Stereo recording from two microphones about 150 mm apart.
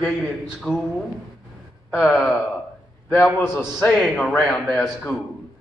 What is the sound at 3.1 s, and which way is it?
A man's voice, 15° left (ahead or behind).